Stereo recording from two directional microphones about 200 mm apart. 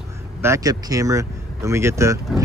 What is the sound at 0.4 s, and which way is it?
Speech, 15° right (ahead or behind).